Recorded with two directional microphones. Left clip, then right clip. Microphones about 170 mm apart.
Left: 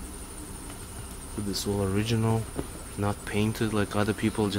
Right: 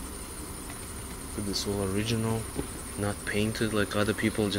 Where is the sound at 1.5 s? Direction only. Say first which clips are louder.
Left 2 dB; 30° left (ahead or behind).